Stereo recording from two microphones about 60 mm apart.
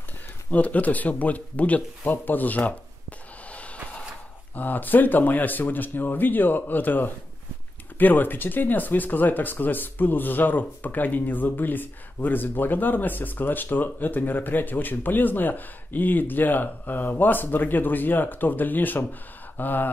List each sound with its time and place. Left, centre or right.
0.5 s speech: left
3.5 s a sound: left
4.6 s speech: left